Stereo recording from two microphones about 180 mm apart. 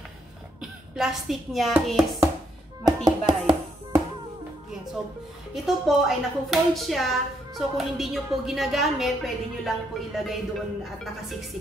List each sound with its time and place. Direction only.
0.6 s speech: 5° right (ahead or behind)
2.8 s music: 25° right (ahead or behind)
5.5 s a woman's voice: centre (ahead or behind)